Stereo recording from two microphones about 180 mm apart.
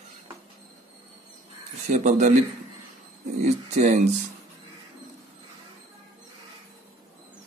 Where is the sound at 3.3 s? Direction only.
40° right (ahead or behind).